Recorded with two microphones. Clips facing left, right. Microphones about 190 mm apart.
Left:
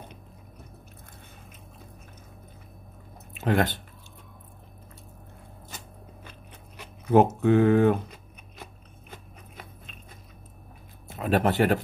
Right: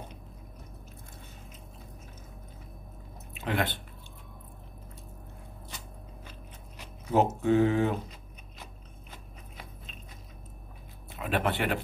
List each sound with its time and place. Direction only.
3.3 s speech: 45° left (ahead or behind)
7.1 s speech: 60° left (ahead or behind)
11.1 s speech: 40° left (ahead or behind)